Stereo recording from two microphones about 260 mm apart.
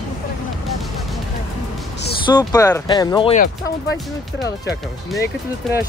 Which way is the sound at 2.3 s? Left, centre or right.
Centre.